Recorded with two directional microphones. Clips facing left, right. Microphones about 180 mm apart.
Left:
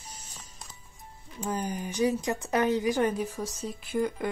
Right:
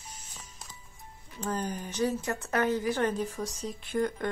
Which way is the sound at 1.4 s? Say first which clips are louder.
Left 1 dB; 10° left (ahead or behind).